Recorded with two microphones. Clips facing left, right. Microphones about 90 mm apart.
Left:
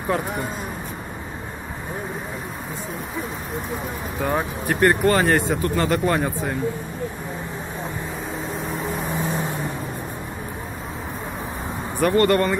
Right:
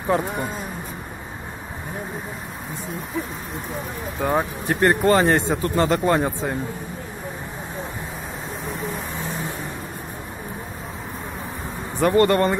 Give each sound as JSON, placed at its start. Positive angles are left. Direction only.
{"t": 4.2, "sound": "speech", "side_deg": -20}
{"t": 12.0, "sound": "speech", "side_deg": -20}